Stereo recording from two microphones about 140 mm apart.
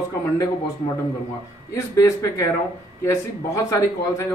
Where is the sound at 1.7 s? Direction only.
20° left (ahead or behind).